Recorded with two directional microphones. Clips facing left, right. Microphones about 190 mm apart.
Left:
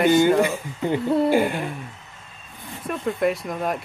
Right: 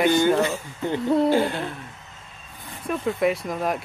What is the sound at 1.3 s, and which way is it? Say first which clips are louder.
Speech: left 1 dB; 15° left (ahead or behind).